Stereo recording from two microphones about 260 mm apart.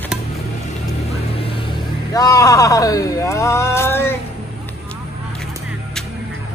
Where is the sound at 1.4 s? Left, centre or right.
Left.